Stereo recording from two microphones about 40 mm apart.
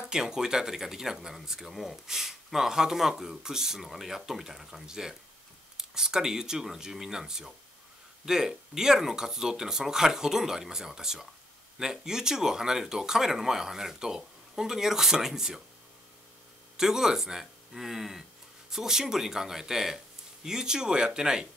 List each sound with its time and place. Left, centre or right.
0.1 s speech: centre
16.7 s speech: centre